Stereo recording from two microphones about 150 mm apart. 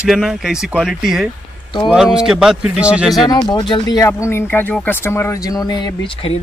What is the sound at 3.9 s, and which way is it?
Speech, 20° left (ahead or behind).